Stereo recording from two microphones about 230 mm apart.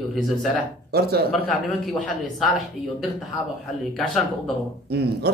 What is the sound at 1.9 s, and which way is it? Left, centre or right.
Speech, centre.